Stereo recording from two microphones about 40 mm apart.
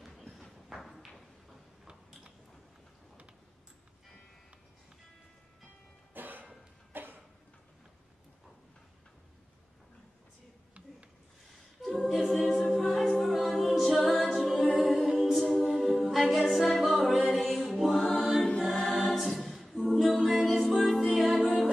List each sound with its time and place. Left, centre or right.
0.7 s a sound: centre
6.1 s cough: right
6.9 s a sound: right
11.8 s a capella: centre
17.4 s mantra: centre
18.6 s choir: centre
19.0 s a capella: centre